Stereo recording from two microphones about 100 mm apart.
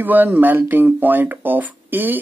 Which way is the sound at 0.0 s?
20° right (ahead or behind).